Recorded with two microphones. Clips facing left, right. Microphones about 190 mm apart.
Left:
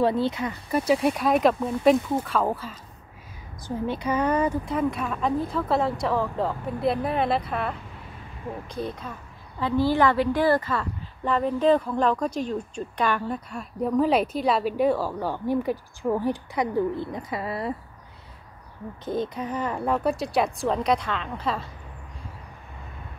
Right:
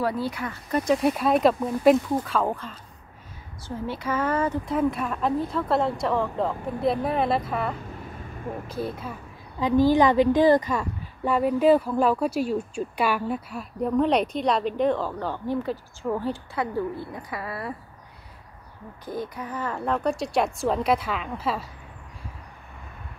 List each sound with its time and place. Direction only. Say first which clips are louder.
0.0 s speech: left 4 dB; 25° left (ahead or behind)
0.7 s a woman's voice: even; 5° left (ahead or behind)
3.6 s speech: left 3 dB; 20° left (ahead or behind)
4.6 s a woman's voice: right 1 dB; centre (ahead or behind); by 17.7 s 25° left (ahead or behind)
19.0 s a woman's voice: left 4 dB; 20° left (ahead or behind); by 21.6 s 5° right (ahead or behind)